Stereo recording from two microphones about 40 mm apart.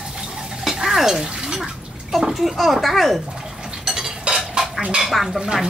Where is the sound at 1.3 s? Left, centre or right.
Centre.